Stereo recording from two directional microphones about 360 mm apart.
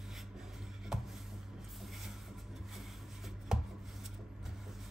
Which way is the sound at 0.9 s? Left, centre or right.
Centre.